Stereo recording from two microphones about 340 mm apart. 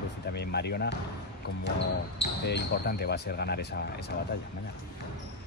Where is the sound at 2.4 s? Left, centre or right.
Left.